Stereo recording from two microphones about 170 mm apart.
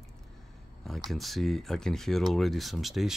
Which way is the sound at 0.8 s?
Centre (ahead or behind).